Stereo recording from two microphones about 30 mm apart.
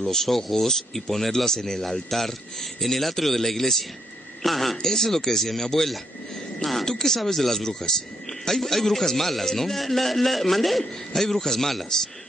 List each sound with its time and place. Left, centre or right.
0.0 s a woman's voice: centre